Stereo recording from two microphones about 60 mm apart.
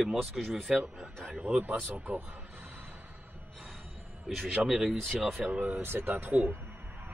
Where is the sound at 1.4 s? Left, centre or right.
Right.